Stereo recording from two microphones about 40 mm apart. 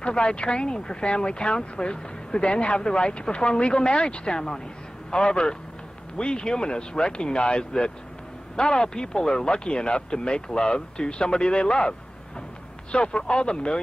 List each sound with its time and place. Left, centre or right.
0.0 s speech: left
12.9 s speech: left